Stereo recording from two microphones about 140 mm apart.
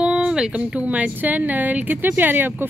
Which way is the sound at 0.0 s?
5° right (ahead or behind).